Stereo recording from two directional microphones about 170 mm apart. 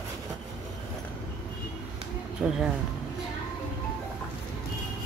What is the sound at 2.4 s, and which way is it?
Speech, centre (ahead or behind).